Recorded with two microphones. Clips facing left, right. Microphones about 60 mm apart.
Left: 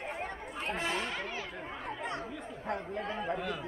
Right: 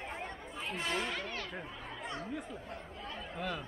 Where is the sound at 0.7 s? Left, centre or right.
Left.